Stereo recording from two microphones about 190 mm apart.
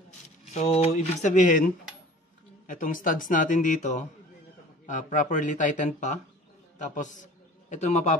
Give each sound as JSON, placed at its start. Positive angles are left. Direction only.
{"t": 0.5, "sound": "speech", "side_deg": 35}
{"t": 2.6, "sound": "speech", "side_deg": 45}